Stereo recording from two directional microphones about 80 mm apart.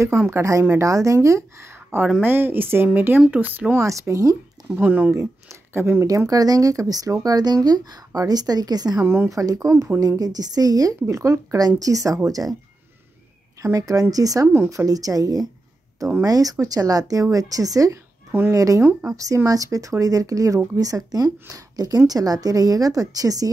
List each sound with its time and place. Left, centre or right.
0.3 s a woman's voice: right
2.2 s speech: right
3.8 s a woman's voice: right
4.8 s speech: right
5.1 s speech: right
6.0 s a woman's voice: right
9.0 s speech: right
9.3 s speech: right
13.6 s speech: right